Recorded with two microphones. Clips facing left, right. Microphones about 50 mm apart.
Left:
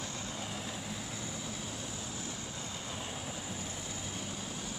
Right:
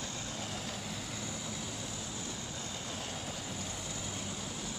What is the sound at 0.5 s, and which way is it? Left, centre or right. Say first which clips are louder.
Vehicle: even; centre.